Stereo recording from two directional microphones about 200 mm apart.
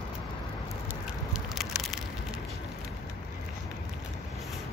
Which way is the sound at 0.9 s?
Centre (ahead or behind).